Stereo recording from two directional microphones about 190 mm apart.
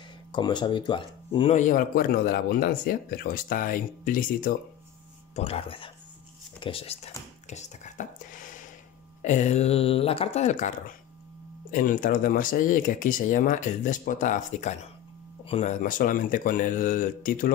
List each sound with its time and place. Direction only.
0.3 s speech: 25° left (ahead or behind); by 4.6 s 45° left (ahead or behind)
5.3 s speech: 30° left (ahead or behind)
7.4 s whispering: 35° left (ahead or behind)
9.2 s speech: 40° left (ahead or behind)